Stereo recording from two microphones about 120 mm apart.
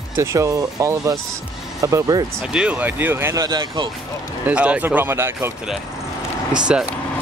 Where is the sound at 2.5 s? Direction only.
10° right (ahead or behind).